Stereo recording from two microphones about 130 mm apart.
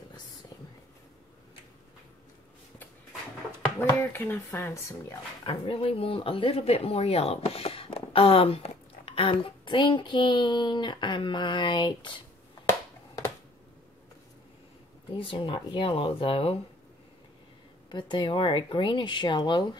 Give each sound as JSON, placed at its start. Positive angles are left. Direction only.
{"t": 3.8, "sound": "speech", "side_deg": 20}
{"t": 5.4, "sound": "speech", "side_deg": 45}
{"t": 15.1, "sound": "speech", "side_deg": 40}
{"t": 17.8, "sound": "speech", "side_deg": 35}